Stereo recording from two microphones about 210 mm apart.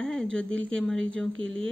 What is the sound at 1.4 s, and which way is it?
Speech, 65° right (ahead or behind).